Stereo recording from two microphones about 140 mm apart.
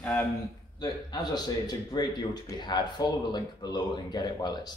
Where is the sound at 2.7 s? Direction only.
30° left (ahead or behind).